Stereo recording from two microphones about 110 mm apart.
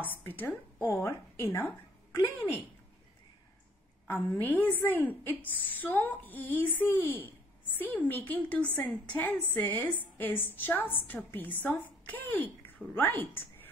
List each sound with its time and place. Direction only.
0.1 s speech: 15° left (ahead or behind)
4.1 s a woman's voice: 15° left (ahead or behind)